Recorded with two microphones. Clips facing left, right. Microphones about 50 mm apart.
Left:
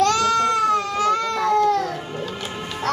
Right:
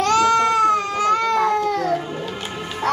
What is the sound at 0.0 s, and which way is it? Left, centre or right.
Baby cry, right.